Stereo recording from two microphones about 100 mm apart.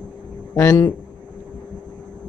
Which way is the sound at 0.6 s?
30° left (ahead or behind).